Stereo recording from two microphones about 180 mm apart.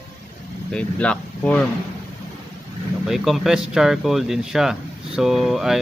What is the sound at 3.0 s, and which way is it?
Speech, centre (ahead or behind).